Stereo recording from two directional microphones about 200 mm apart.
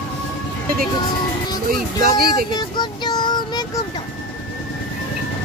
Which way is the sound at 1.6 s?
50° right (ahead or behind).